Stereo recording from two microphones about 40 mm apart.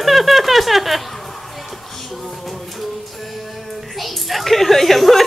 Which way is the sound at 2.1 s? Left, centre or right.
Centre.